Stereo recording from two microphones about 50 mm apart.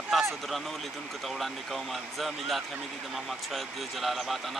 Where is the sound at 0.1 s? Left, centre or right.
Centre.